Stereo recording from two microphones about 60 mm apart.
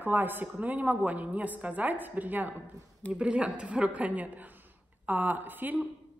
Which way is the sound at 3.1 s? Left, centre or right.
Centre.